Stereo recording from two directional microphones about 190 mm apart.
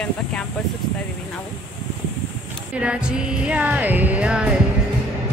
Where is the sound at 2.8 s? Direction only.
5° right (ahead or behind).